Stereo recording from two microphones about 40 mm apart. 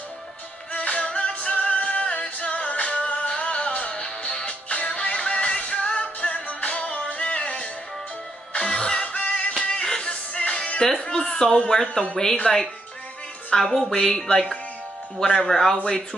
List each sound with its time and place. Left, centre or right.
0.7 s music: left
9.6 s music: centre
10.8 s a sound: centre
11.7 s speech: centre